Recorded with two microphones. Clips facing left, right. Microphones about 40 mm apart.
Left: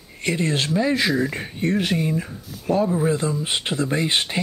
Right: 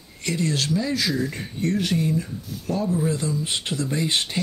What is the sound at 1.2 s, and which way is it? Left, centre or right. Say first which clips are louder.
Speech: left 2 dB; left.